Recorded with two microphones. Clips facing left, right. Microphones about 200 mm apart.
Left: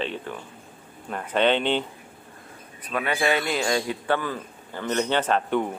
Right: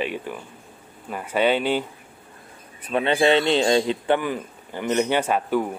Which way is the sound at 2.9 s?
25° right (ahead or behind).